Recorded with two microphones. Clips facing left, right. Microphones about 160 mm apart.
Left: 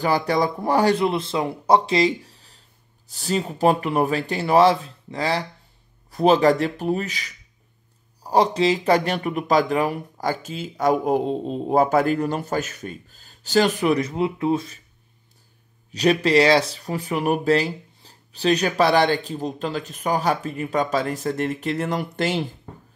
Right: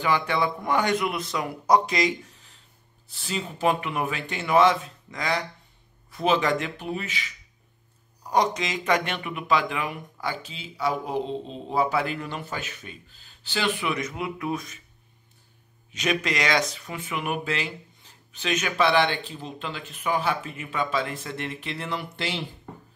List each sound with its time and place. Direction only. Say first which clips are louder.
0.0 s speech: left 4 dB; 40° left (ahead or behind)
15.9 s speech: left 9 dB; 35° left (ahead or behind)